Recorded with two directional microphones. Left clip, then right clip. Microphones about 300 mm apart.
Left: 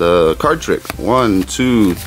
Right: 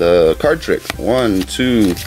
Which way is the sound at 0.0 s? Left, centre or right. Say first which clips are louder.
Right 1 dB; centre.